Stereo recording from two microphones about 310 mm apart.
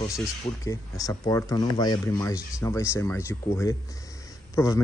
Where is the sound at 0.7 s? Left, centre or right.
Centre.